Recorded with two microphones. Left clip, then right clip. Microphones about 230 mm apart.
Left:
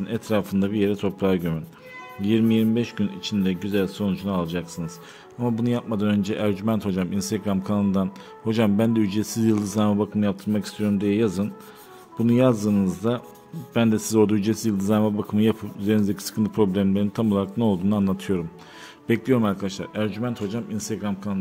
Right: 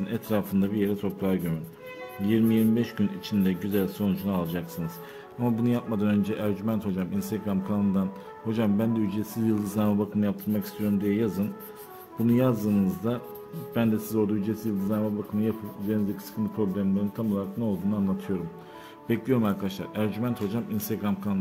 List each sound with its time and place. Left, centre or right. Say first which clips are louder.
0.0 s a man's voice: left 4 dB; centre